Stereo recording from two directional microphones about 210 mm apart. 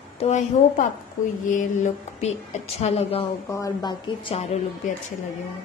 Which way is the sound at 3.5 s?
15° left (ahead or behind).